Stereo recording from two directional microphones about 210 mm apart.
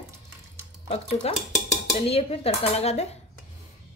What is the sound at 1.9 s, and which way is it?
Speech, 30° left (ahead or behind).